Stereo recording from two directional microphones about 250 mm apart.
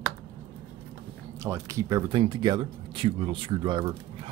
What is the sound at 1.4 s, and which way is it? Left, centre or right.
Speech, centre.